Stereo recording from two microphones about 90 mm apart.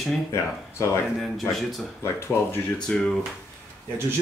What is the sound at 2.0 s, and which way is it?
Speech, 30° left (ahead or behind).